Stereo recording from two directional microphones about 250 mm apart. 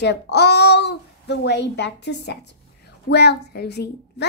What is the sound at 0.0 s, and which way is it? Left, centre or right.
A child's voice, left.